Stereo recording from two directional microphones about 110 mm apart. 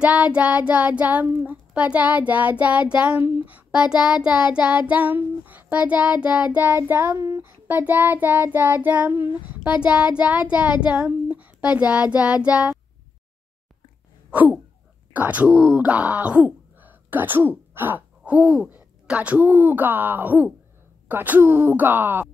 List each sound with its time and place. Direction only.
0.0 s child singing: 10° right (ahead or behind); by 7.5 s 25° right (ahead or behind)
7.6 s child singing: 15° right (ahead or behind)
15.1 s speech: 15° right (ahead or behind)
21.1 s child singing: 15° right (ahead or behind)